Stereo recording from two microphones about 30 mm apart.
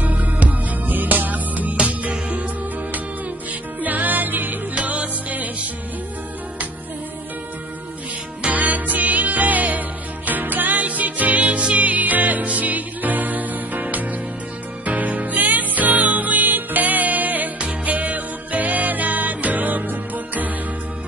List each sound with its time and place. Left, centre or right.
0.0 s music: right
1.9 s music: right
3.8 s music: right
4.7 s music: right
8.5 s music: right
11.4 s music: right
14.9 s music: right
17.6 s music: right